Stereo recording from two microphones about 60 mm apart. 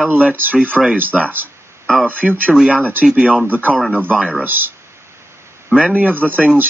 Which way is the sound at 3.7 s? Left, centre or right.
Centre.